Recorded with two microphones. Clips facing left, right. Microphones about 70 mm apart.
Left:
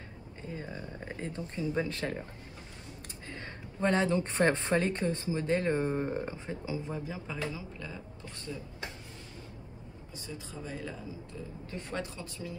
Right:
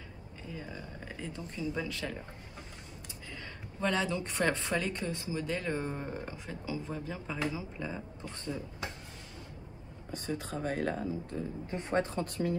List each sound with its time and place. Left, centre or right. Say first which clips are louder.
0.4 s speech: left 2 dB; left
3.3 s a woman's voice: left 3 dB; left
7.3 s speech: right 3 dB; centre
7.8 s speech: right 4 dB; right
10.1 s speech: right 7 dB; right
11.6 s speech: right 6 dB; right
12.0 s speech: right 7 dB; right